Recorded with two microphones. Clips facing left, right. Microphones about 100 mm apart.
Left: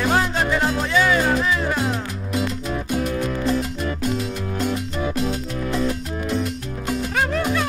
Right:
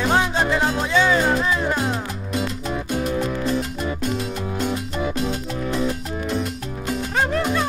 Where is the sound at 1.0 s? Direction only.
10° right (ahead or behind).